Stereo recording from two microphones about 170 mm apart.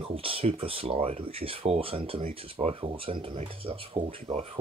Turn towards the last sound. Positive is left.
turn(degrees=-35)  # may be behind; listen again after turning